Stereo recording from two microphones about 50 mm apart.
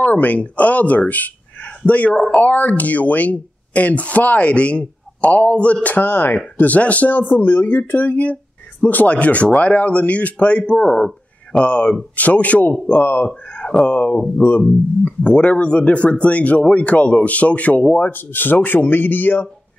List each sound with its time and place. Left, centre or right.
0.0 s speech: left
13.5 s speech: left